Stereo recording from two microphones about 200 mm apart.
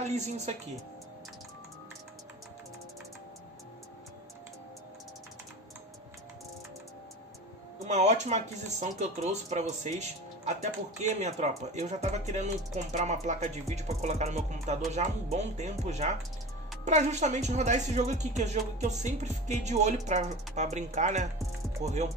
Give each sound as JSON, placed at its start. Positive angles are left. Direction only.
{"t": 7.9, "sound": "speech", "side_deg": -35}